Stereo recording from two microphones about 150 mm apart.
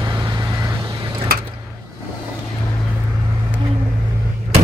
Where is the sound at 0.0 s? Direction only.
30° right (ahead or behind).